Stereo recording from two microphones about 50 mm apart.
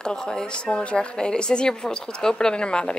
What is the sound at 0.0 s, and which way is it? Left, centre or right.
A woman's voice, centre.